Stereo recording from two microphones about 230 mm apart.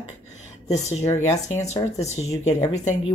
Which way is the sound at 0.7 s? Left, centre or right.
Left.